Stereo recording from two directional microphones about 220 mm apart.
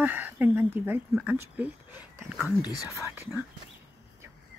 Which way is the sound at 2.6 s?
15° left (ahead or behind).